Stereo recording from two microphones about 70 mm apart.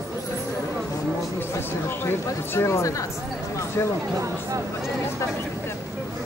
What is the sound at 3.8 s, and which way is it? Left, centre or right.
Speech, left.